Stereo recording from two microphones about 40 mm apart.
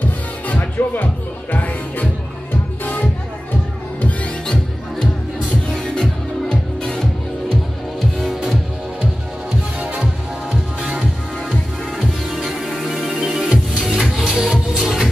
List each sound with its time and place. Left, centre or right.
0.5 s music: left
6.8 s music: centre
9.8 s music: right
12.0 s music: centre